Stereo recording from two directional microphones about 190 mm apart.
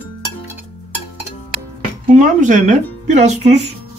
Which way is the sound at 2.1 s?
40° right (ahead or behind).